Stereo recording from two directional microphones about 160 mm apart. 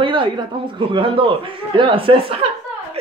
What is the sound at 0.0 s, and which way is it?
A man's voice, 30° right (ahead or behind).